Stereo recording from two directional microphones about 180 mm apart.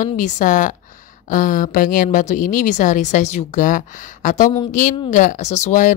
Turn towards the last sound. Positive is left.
turn(degrees=45)  # may be behind; listen again after turning